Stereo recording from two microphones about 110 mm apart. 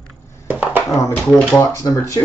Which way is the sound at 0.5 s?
15° right (ahead or behind).